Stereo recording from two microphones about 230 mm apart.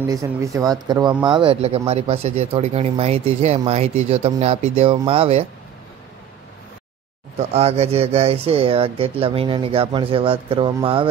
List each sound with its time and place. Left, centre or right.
0.1 s speech: centre
7.3 s speech: right